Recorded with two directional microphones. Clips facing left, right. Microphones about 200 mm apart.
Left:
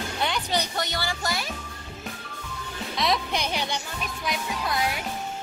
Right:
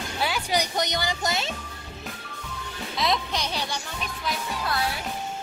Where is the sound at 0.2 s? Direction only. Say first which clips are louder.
Right 2 dB; 10° right (ahead or behind).